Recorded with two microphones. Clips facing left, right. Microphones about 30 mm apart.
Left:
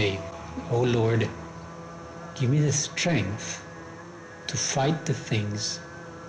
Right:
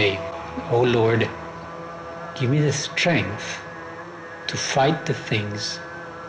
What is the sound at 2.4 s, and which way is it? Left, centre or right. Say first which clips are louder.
Speech: right 4 dB; right.